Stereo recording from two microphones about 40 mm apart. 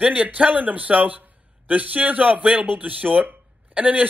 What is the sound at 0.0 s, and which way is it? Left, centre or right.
A man's voice, right.